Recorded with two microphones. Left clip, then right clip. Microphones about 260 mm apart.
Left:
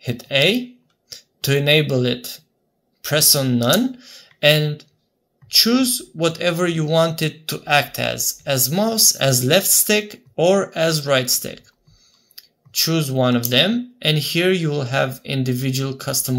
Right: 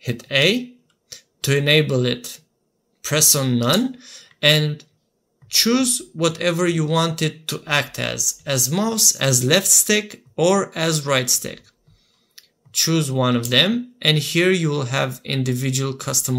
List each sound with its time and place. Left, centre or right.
0.0 s speech: centre